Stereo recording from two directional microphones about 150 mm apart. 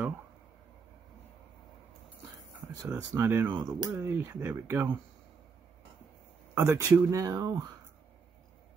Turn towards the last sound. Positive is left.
turn(degrees=-25)  # may be behind; listen again after turning